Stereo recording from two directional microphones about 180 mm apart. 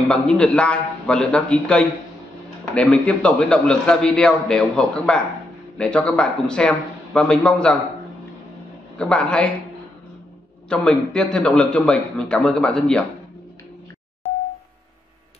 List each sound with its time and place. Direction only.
0.1 s a man's voice: 5° left (ahead or behind)
8.9 s a man's voice: 5° left (ahead or behind)
10.7 s a man's voice: 5° left (ahead or behind)